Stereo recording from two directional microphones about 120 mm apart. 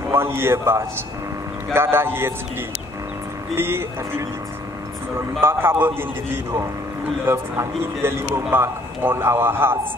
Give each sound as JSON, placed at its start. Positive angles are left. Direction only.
{"t": 0.1, "sound": "a man's voice", "side_deg": -20}
{"t": 3.5, "sound": "a man's voice", "side_deg": -20}
{"t": 5.4, "sound": "a man's voice", "side_deg": -20}